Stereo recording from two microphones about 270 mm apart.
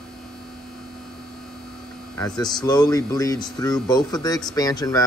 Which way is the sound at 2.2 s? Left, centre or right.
Centre.